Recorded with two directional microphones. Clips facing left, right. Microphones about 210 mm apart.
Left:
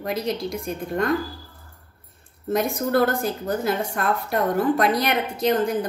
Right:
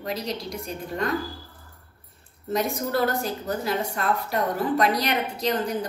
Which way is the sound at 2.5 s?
50° left (ahead or behind).